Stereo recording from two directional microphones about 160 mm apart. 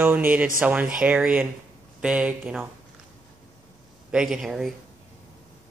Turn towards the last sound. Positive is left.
turn(degrees=0)  # may be behind; listen again after turning